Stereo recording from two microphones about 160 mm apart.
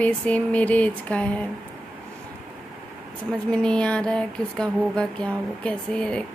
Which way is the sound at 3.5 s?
5° left (ahead or behind).